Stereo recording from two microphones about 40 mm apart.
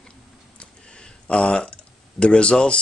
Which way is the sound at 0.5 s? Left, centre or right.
Left.